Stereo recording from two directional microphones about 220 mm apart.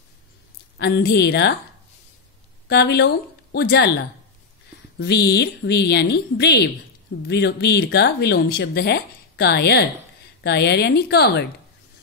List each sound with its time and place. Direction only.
0.7 s speech: 50° left (ahead or behind)
2.7 s speech: 50° left (ahead or behind)
4.9 s speech: 50° left (ahead or behind)